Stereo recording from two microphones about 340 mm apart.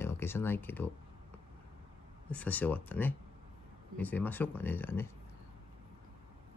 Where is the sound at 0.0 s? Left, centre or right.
Centre.